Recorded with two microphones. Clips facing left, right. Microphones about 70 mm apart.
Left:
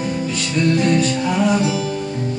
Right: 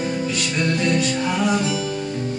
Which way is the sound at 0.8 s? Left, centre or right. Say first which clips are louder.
Left 3 dB; left.